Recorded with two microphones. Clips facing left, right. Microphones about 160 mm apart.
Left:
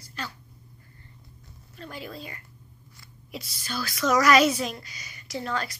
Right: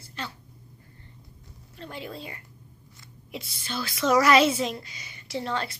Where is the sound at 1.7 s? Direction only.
25° right (ahead or behind).